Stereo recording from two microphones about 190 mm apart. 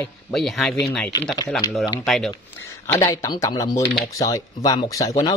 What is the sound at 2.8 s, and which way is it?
Speech, 15° left (ahead or behind).